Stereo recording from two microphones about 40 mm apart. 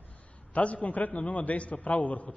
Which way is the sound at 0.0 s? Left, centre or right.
Left.